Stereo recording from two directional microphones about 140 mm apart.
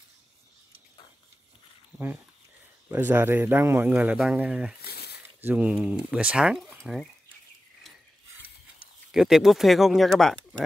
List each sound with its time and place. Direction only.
1.9 s a sound: 20° right (ahead or behind)
2.9 s speech: 15° right (ahead or behind)
9.1 s speech: 5° right (ahead or behind)